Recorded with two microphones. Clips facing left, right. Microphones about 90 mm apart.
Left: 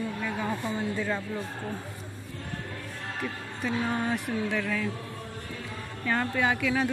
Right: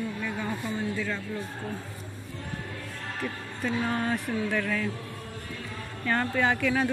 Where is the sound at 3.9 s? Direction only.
15° left (ahead or behind).